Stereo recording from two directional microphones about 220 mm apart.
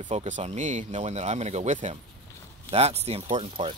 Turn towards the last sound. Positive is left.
turn(degrees=-25)  # may be behind; listen again after turning